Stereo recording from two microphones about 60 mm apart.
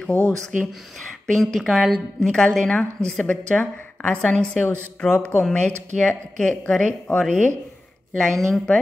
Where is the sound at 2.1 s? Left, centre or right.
Centre.